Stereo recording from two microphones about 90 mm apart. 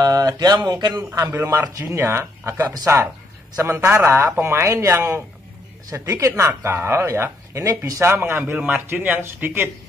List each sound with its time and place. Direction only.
0.0 s speech: 45° right (ahead or behind)
0.9 s speech: 35° right (ahead or behind)
1.3 s speech: 20° right (ahead or behind)
1.8 s speech: 30° right (ahead or behind)
2.6 s speech: 45° right (ahead or behind)
3.5 s speech: 30° right (ahead or behind)